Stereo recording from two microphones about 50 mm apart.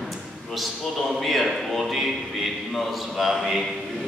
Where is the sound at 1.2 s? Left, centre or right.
Centre.